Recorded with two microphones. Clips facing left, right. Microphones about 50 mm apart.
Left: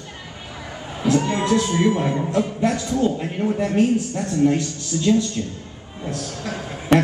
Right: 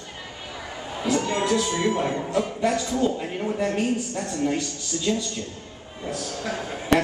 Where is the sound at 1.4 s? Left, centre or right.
Centre.